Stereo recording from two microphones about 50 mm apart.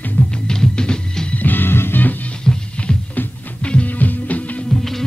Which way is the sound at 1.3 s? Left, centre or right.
Left.